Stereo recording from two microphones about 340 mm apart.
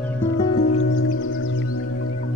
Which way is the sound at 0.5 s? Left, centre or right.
Left.